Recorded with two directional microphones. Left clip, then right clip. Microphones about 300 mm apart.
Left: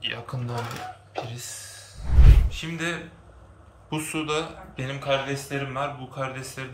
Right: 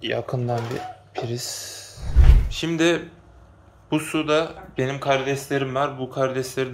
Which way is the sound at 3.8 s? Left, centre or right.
Centre.